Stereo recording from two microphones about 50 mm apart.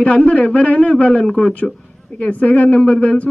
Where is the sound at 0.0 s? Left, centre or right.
Left.